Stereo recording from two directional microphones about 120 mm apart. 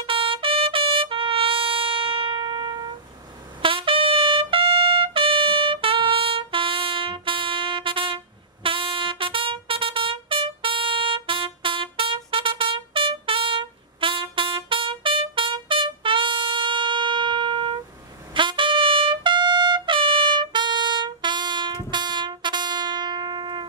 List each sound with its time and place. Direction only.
0.0 s trumpet: 50° right (ahead or behind)
8.6 s music: 45° right (ahead or behind)
18.3 s trumpet: 45° right (ahead or behind)